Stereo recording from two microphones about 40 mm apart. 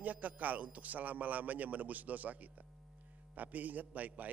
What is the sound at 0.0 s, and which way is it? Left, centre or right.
A man's voice, right.